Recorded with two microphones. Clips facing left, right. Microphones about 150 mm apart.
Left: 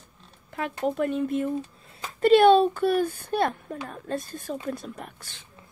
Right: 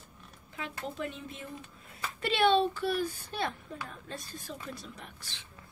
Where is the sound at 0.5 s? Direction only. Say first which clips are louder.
Left 12 dB; 55° left (ahead or behind).